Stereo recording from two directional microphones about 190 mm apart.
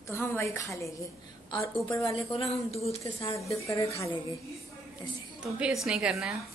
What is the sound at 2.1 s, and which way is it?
Speech, 30° left (ahead or behind).